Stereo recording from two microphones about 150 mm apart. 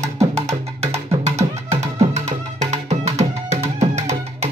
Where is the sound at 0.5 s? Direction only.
45° right (ahead or behind).